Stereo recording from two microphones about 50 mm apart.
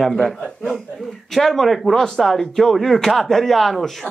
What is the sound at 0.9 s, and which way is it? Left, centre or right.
Speech, centre.